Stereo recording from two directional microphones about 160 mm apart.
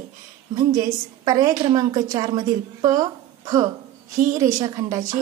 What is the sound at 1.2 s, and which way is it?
A woman's voice, 25° right (ahead or behind).